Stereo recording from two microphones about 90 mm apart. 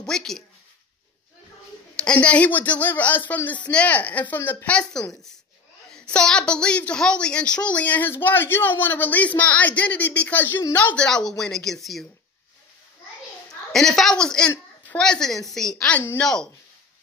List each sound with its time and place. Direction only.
0.0 s a woman's voice: 5° left (ahead or behind)
2.0 s a woman's voice: 10° left (ahead or behind)
4.6 s a woman's voice: 15° left (ahead or behind)
13.7 s a woman's voice: 5° left (ahead or behind)